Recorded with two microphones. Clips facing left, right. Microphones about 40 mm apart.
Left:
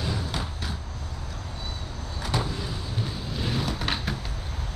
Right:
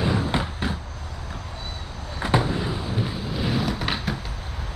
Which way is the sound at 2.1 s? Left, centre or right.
Right.